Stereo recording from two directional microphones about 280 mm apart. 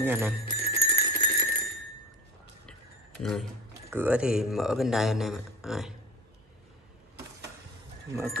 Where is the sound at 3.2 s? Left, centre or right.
Centre.